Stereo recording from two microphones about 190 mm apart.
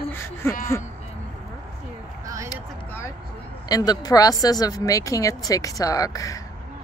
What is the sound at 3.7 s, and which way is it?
Speech, 20° left (ahead or behind).